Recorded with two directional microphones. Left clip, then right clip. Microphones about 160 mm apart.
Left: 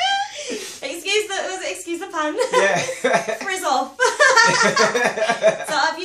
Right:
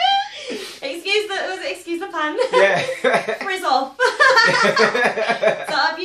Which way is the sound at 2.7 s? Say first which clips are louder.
Right 1 dB; 20° right (ahead or behind).